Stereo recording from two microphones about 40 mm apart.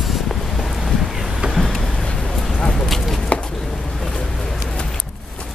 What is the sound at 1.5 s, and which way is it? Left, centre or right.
Vehicle, centre.